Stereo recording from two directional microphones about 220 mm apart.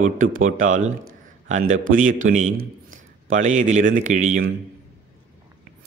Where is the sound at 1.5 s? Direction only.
35° right (ahead or behind).